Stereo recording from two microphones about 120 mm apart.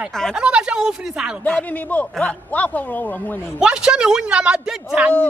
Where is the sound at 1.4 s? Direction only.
10° left (ahead or behind).